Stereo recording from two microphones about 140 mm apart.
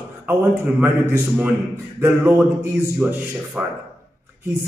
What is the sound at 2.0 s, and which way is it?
A man's voice, 15° right (ahead or behind).